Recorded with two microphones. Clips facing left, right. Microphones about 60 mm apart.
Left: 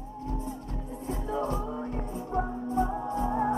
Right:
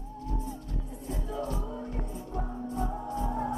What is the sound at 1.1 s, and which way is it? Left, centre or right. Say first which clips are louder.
Music: left 4 dB; left.